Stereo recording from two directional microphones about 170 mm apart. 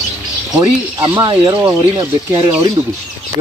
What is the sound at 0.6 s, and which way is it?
Speech, 20° right (ahead or behind).